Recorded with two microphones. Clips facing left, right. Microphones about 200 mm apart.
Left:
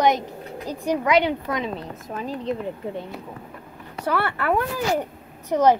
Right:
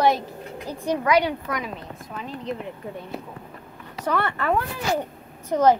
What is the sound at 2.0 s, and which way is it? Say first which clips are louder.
Speech: left 5 dB; 40° left (ahead or behind).